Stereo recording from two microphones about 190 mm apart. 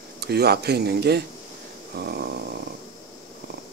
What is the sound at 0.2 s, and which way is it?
Speech, 60° right (ahead or behind).